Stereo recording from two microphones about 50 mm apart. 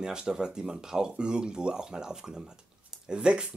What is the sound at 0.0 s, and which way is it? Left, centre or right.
Speech, centre.